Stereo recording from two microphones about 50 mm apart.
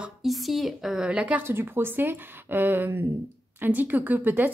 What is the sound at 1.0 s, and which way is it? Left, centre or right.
Speech, right.